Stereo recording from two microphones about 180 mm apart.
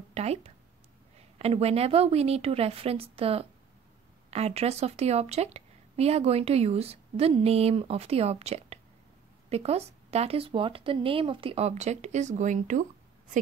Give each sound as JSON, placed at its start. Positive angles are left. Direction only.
{"t": 0.1, "sound": "a woman's voice", "side_deg": -35}